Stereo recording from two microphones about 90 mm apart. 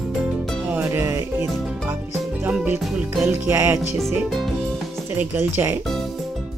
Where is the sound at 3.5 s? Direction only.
20° right (ahead or behind).